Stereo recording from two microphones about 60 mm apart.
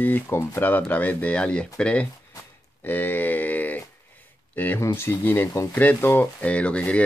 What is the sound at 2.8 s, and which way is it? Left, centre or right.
Speech, left.